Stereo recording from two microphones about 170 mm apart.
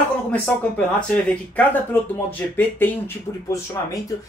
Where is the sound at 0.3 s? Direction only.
5° left (ahead or behind).